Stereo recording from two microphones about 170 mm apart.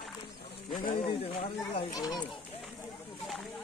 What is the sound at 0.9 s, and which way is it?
Speech, 35° left (ahead or behind).